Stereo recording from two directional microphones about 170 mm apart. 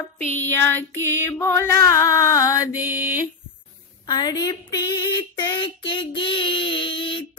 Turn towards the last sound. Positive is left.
turn(degrees=30)  # may be behind; listen again after turning